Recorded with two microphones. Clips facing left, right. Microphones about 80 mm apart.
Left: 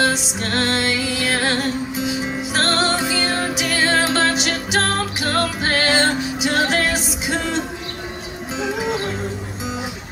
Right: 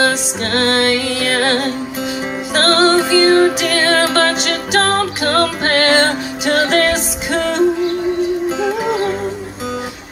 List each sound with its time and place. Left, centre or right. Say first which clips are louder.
0.6 s music: right 6 dB; right
0.9 s music: right 4 dB; centre
2.5 s music: right 7 dB; right
2.9 s music: right 9 dB; centre
3.3 s music: right 12 dB; right
3.6 s music: right 4 dB; centre